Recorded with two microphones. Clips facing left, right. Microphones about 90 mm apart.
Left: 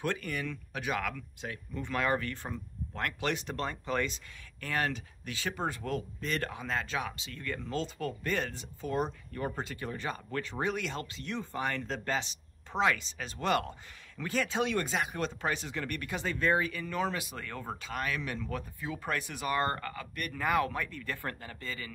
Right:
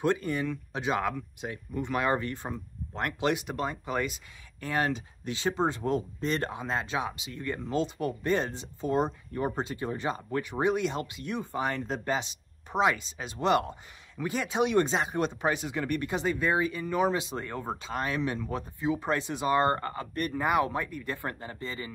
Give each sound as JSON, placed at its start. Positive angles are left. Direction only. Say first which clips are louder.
{"t": 0.0, "sound": "speech", "louder": "right 6 dB", "side_deg": -25}